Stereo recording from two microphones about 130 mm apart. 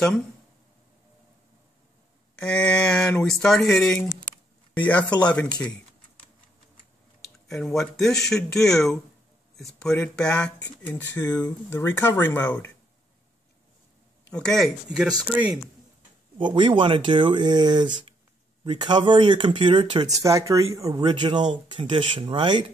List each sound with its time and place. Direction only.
2.3 s speech: 10° left (ahead or behind)
7.4 s speech: centre (ahead or behind)
14.3 s speech: 5° left (ahead or behind)
16.3 s speech: 40° right (ahead or behind)
20.2 s speech: 25° right (ahead or behind); by 22.7 s 40° right (ahead or behind)